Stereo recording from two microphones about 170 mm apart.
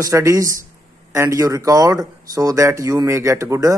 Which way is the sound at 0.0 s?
20° right (ahead or behind).